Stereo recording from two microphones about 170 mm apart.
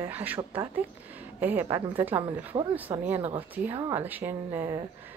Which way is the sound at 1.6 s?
25° right (ahead or behind).